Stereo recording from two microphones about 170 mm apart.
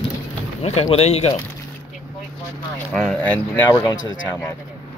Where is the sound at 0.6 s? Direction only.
40° left (ahead or behind).